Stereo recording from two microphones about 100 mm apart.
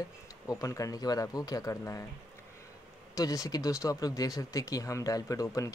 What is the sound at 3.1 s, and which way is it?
Speech, 35° left (ahead or behind).